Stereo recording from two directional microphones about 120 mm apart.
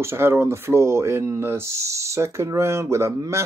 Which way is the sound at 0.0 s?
20° right (ahead or behind).